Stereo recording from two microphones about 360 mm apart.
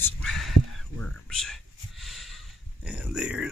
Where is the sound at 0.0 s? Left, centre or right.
Centre.